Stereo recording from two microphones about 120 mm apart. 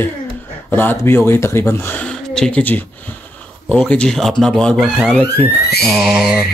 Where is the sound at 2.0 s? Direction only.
5° left (ahead or behind).